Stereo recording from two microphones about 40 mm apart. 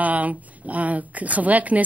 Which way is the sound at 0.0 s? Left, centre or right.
Right.